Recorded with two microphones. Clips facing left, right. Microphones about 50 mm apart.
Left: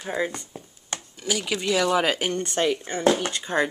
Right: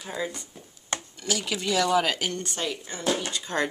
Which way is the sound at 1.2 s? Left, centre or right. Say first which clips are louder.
Left 4 dB; centre.